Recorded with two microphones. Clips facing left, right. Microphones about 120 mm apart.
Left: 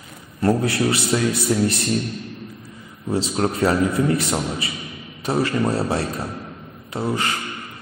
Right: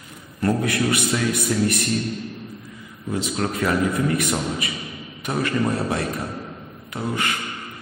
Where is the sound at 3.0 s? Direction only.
30° left (ahead or behind).